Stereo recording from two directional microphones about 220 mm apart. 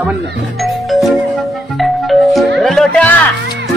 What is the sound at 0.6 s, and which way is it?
Music, centre (ahead or behind).